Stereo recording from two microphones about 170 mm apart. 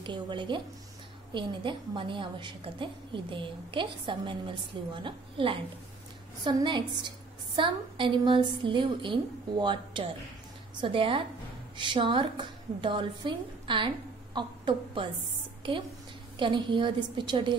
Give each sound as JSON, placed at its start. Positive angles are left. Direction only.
{"t": 0.0, "sound": "a woman's voice", "side_deg": -30}
{"t": 16.3, "sound": "a woman's voice", "side_deg": -30}